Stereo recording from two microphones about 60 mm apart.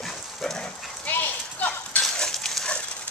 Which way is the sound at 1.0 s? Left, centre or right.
Left.